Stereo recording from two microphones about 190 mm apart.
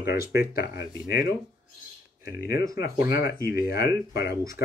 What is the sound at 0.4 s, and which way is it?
Speech, 55° left (ahead or behind).